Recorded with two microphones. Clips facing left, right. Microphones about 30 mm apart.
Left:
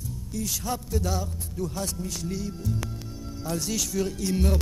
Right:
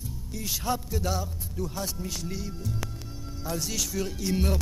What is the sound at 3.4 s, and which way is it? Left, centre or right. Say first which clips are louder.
Music: left 2 dB; centre.